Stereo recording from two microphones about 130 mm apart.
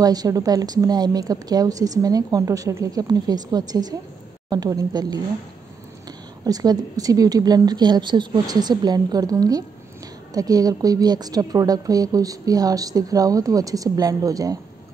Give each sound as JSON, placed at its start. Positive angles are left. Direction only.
{"t": 0.0, "sound": "a woman's voice", "side_deg": -30}
{"t": 6.4, "sound": "a woman's voice", "side_deg": -30}